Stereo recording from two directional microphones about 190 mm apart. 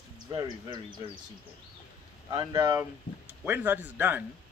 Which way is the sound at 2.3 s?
20° right (ahead or behind).